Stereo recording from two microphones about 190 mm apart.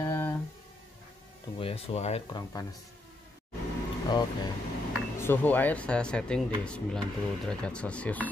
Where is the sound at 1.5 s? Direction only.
30° left (ahead or behind).